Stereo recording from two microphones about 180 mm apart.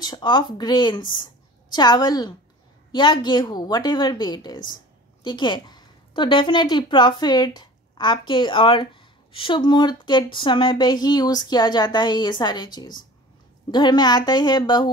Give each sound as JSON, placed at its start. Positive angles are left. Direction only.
{"t": 0.0, "sound": "a woman's voice", "side_deg": 25}